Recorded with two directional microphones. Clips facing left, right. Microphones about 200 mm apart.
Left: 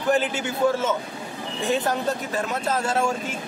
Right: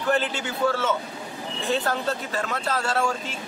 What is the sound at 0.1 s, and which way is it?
A man's voice, 15° left (ahead or behind).